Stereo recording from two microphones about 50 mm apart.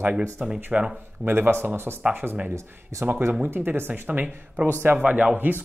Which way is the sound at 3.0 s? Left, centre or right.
Right.